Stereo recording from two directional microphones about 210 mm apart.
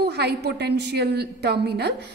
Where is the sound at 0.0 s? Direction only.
50° right (ahead or behind).